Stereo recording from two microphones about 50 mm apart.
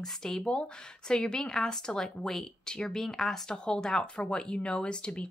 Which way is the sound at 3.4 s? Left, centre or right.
Centre.